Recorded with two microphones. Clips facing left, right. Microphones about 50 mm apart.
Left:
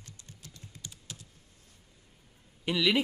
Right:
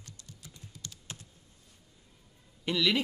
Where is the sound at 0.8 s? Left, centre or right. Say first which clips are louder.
Right 1 dB; centre.